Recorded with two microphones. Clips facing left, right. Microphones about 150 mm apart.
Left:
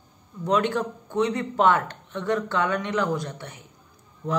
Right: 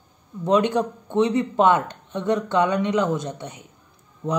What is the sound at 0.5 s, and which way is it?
A man's voice, 20° right (ahead or behind).